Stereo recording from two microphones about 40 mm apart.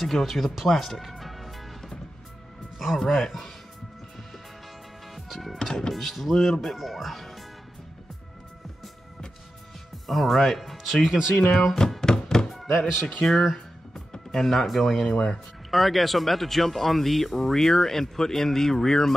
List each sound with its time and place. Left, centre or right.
0.0 s speech: centre
3.0 s speech: centre
5.1 s speech: centre
6.3 s speech: centre
10.0 s speech: centre
11.5 s speech: centre
12.0 s thunk: centre
12.5 s speech: centre
13.9 s music: centre
15.1 s speech: centre